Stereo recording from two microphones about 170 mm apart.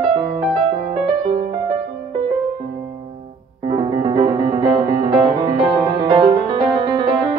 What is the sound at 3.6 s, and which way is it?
Music, 25° right (ahead or behind).